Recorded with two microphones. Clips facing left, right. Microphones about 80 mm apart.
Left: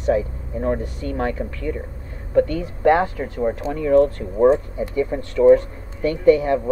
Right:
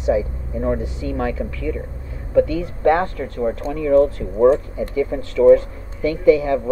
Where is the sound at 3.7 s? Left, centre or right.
Centre.